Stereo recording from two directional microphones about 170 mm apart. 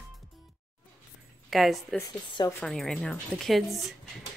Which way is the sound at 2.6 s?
Centre (ahead or behind).